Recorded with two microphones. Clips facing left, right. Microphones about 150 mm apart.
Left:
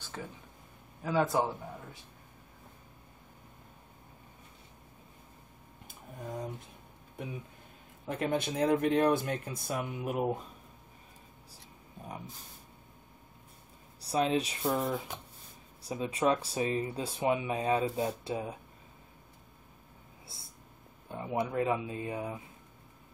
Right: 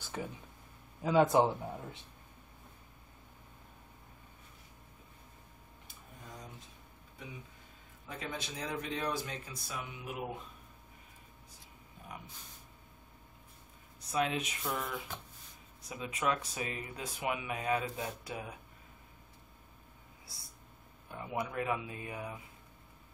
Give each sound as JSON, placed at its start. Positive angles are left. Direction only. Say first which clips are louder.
{"t": 0.0, "sound": "a sound", "louder": "right 2 dB", "side_deg": -15}
{"t": 1.0, "sound": "speech", "louder": "right 3 dB", "side_deg": -20}
{"t": 7.2, "sound": "speech", "louder": "left 8 dB", "side_deg": 55}
{"t": 13.9, "sound": "speech", "louder": "left 5 dB", "side_deg": 35}
{"t": 20.3, "sound": "speech", "louder": "left 3 dB", "side_deg": 25}